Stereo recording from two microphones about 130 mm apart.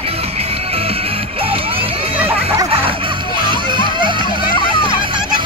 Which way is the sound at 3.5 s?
40° right (ahead or behind).